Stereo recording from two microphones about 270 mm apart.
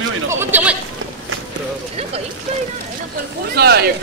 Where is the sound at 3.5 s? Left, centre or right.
Right.